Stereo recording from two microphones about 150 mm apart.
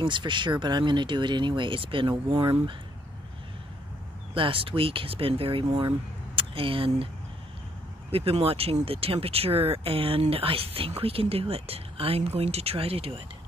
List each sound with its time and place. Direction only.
0.0 s speech: 30° right (ahead or behind)
4.3 s speech: 35° right (ahead or behind)
8.1 s speech: 40° right (ahead or behind)